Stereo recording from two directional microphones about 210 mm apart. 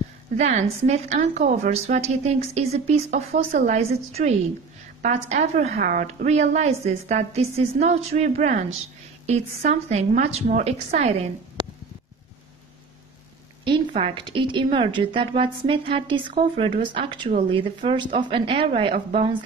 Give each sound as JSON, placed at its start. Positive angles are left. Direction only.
{"t": 0.4, "sound": "a woman's voice", "side_deg": -35}
{"t": 13.7, "sound": "a woman's voice", "side_deg": -25}